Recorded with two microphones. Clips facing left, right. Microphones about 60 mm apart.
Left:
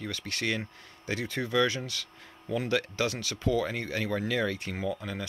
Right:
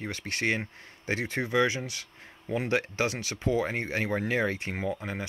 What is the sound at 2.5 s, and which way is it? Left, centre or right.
Speech, right.